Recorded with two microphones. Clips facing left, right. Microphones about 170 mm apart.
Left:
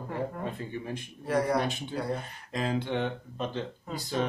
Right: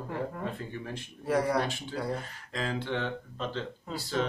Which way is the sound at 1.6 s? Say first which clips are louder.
Left 1 dB; 20° left (ahead or behind).